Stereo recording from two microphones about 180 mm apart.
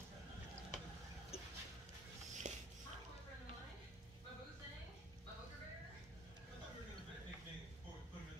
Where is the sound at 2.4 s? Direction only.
40° right (ahead or behind).